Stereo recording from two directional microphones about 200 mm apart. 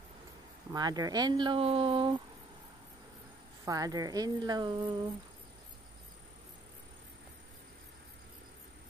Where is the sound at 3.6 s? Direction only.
15° right (ahead or behind).